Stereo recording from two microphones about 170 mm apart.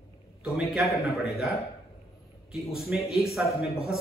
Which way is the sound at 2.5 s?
5° right (ahead or behind).